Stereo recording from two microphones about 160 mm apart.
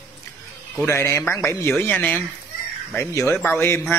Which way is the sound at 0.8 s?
15° left (ahead or behind).